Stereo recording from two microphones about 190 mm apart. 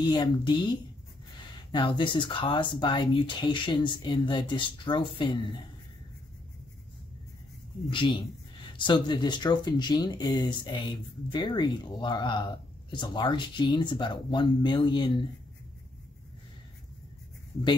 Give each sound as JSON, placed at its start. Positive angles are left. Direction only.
{"t": 0.0, "sound": "speech", "side_deg": 25}
{"t": 7.9, "sound": "speech", "side_deg": 25}